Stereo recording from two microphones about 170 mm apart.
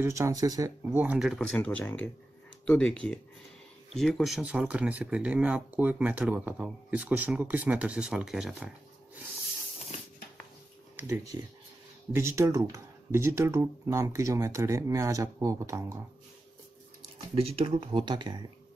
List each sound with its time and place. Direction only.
0.0 s speech: 20° right (ahead or behind); by 8.6 s 5° right (ahead or behind)
11.0 s speech: 15° right (ahead or behind)
17.4 s speech: 35° right (ahead or behind)